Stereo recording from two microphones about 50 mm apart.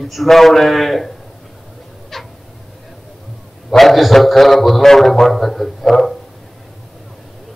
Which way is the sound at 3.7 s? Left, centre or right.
Centre.